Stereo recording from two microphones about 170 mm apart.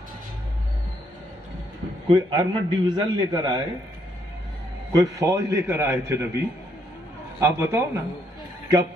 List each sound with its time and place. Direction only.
2.0 s a man's voice: 25° right (ahead or behind)
4.9 s a man's voice: 20° right (ahead or behind)